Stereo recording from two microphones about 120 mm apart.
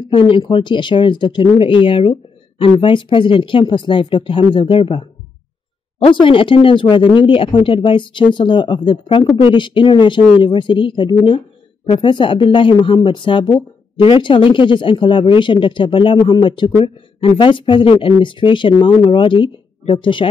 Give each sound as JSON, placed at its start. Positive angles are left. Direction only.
{"t": 0.1, "sound": "speech", "side_deg": 45}
{"t": 6.0, "sound": "speech", "side_deg": 45}